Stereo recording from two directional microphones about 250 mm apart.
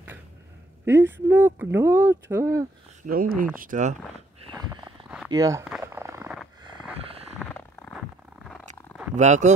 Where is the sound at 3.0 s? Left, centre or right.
Right.